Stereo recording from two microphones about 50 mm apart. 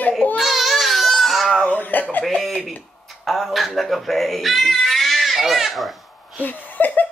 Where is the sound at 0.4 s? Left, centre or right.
Centre.